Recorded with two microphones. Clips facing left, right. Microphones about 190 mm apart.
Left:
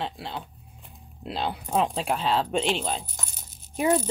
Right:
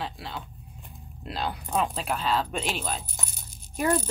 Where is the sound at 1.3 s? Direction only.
25° left (ahead or behind).